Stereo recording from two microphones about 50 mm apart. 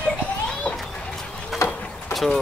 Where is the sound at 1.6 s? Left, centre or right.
Centre.